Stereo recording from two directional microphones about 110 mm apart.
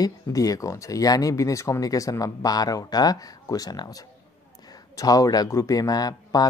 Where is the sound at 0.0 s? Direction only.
30° left (ahead or behind).